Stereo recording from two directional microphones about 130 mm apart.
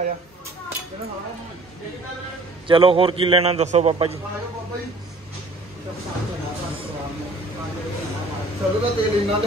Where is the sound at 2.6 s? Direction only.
45° right (ahead or behind).